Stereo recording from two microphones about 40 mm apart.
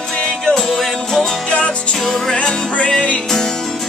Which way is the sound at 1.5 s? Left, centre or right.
Left.